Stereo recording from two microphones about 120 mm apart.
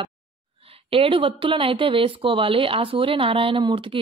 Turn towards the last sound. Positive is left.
turn(degrees=-40)  # may be behind; listen again after turning